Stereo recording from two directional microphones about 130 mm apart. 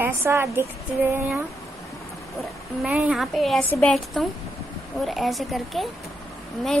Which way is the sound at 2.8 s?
10° right (ahead or behind).